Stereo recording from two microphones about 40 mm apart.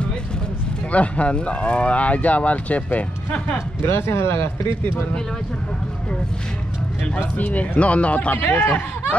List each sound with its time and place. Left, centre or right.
0.9 s speech: left
3.8 s speech: left
7.2 s speech: left